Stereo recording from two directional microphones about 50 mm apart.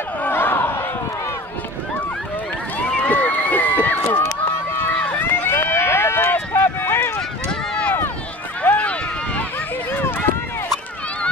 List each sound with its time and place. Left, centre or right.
0.3 s a sound: left
3.1 s run: left
8.6 s run: left